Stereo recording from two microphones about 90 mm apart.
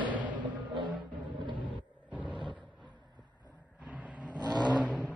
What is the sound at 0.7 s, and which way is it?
Music, 60° right (ahead or behind).